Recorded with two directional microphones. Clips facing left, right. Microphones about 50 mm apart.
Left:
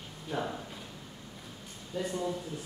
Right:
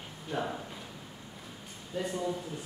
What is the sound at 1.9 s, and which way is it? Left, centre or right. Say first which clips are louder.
Speech: even; centre.